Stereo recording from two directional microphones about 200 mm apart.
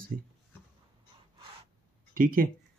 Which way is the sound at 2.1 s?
45° right (ahead or behind).